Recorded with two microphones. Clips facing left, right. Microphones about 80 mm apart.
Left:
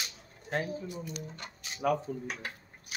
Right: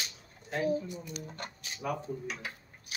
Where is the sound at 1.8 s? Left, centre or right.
Left.